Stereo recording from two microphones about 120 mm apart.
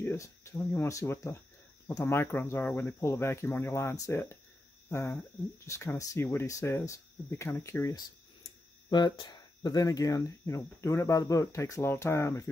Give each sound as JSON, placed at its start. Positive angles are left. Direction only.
{"t": 0.0, "sound": "speech", "side_deg": 20}
{"t": 8.9, "sound": "speech", "side_deg": 40}